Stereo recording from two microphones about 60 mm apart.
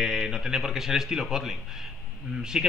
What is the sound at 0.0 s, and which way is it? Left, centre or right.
A man's voice, centre.